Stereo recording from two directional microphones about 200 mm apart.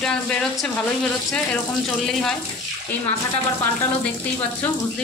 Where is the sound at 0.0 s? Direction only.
5° left (ahead or behind).